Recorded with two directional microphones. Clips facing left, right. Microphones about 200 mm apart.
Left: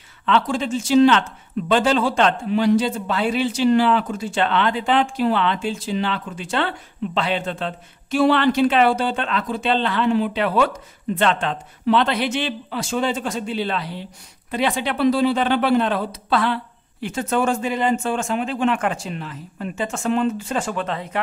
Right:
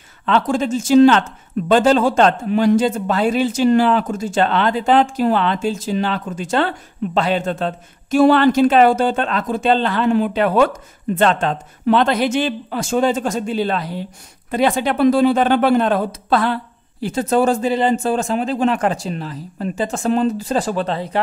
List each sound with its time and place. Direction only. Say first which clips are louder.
0.2 s a man's voice: right 3 dB; 45° right (ahead or behind)